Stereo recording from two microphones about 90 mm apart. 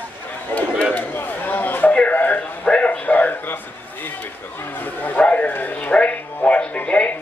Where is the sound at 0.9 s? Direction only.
20° left (ahead or behind).